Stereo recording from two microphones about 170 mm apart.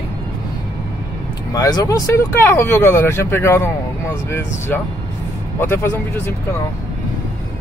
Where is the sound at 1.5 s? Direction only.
25° left (ahead or behind).